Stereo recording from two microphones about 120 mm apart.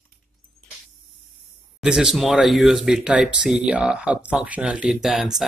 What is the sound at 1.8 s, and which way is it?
Speech, 5° right (ahead or behind).